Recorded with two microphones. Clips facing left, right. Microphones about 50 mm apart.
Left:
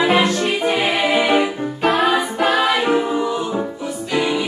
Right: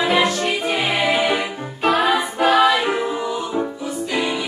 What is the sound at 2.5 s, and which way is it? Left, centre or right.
Music, centre.